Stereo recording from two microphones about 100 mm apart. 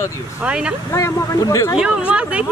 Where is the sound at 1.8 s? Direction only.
10° right (ahead or behind).